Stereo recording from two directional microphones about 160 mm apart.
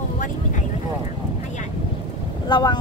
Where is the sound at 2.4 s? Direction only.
25° left (ahead or behind).